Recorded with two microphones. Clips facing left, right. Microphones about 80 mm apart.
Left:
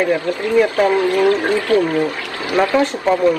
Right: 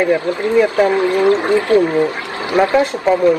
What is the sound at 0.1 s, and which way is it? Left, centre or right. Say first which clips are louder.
Speech: right 2 dB; right.